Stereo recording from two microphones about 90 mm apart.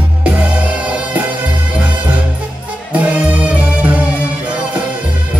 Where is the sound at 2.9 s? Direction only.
15° right (ahead or behind).